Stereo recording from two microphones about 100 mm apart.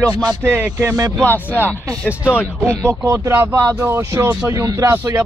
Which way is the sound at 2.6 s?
25° right (ahead or behind).